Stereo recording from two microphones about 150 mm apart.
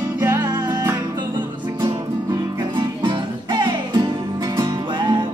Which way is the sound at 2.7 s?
30° right (ahead or behind).